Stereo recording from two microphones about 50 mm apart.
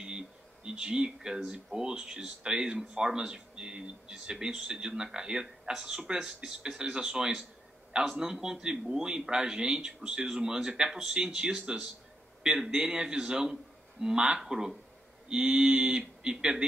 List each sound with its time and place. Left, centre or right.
0.7 s speech: centre